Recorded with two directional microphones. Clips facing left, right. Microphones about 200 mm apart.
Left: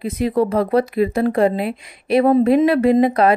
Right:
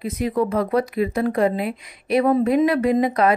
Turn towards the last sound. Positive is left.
turn(degrees=30)  # may be behind; listen again after turning